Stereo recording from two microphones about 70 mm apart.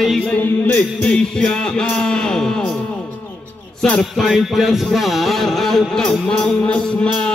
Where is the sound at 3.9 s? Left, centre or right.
Centre.